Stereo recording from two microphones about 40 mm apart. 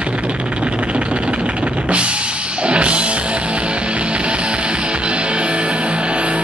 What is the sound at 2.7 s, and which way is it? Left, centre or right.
Music, right.